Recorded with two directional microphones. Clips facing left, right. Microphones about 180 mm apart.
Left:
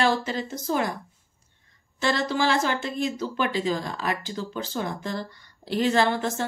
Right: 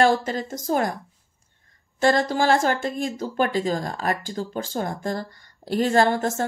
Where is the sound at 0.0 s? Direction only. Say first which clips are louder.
Right 4 dB; 45° right (ahead or behind).